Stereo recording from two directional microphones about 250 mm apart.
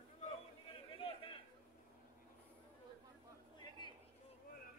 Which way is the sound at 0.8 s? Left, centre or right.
Left.